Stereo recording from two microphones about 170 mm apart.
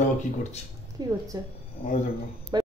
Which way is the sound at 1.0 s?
25° right (ahead or behind).